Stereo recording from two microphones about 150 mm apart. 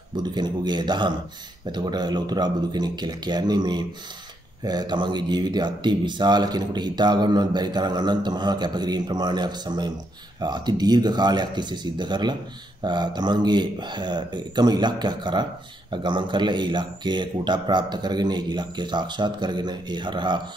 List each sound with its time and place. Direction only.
0.1 s speech: 30° right (ahead or behind)